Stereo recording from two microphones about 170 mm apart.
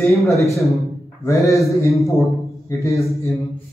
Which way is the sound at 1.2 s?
20° left (ahead or behind).